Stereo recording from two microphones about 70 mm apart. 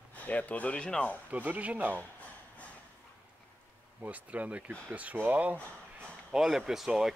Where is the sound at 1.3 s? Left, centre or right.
Right.